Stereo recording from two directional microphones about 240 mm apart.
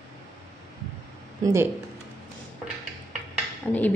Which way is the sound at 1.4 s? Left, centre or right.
Centre.